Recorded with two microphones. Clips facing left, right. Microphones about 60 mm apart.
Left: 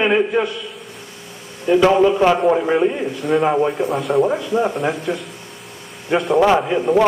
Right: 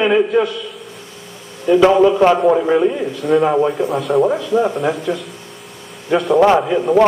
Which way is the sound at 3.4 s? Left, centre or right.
Centre.